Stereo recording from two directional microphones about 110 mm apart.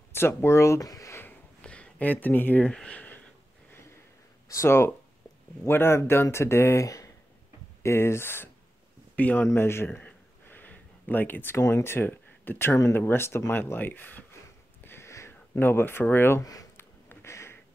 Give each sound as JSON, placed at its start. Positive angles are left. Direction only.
{"t": 0.1, "sound": "speech", "side_deg": 20}
{"t": 1.6, "sound": "speech", "side_deg": 10}
{"t": 4.5, "sound": "speech", "side_deg": 25}
{"t": 9.1, "sound": "a sound", "side_deg": 15}
{"t": 11.6, "sound": "speech", "side_deg": 25}
{"t": 14.8, "sound": "a sound", "side_deg": 20}